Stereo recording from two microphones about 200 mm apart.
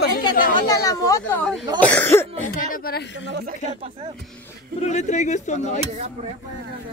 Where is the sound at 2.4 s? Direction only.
45° left (ahead or behind).